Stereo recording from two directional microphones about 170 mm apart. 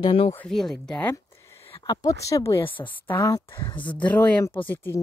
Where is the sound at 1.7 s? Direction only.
25° left (ahead or behind).